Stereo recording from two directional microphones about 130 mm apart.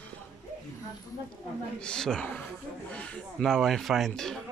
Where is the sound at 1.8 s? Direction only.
5° left (ahead or behind).